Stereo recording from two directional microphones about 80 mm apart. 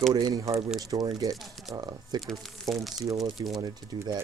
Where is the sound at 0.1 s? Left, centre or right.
Right.